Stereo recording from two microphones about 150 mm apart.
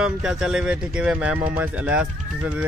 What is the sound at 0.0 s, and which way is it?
Speech, 5° right (ahead or behind).